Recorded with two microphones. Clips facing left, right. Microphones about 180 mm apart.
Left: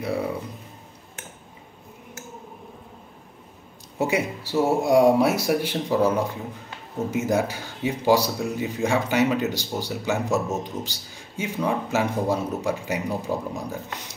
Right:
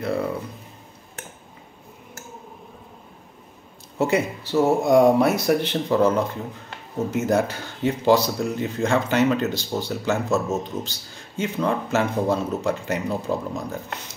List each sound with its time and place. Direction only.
0.0 s speech: 10° left (ahead or behind)
4.0 s speech: 10° left (ahead or behind)